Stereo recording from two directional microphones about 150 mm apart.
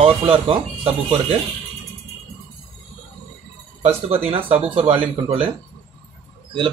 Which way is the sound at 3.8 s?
40° right (ahead or behind).